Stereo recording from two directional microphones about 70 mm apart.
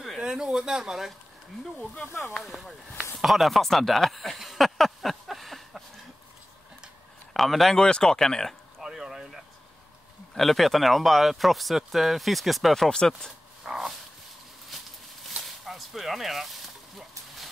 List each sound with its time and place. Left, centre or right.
0.2 s speech: centre
2.0 s speech: left
2.4 s speech: centre
3.2 s a sound: centre
7.3 s speech: centre
8.8 s a sound: centre
10.3 s speech: centre
13.7 s speech: centre
14.7 s a sound: centre